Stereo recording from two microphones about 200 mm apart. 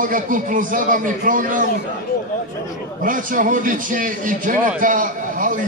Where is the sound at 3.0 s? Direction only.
40° right (ahead or behind).